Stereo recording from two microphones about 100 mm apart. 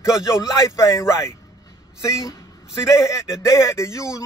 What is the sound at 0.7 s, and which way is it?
Speech, 30° left (ahead or behind).